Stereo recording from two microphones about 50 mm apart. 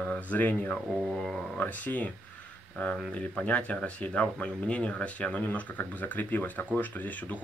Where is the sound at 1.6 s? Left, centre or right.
Left.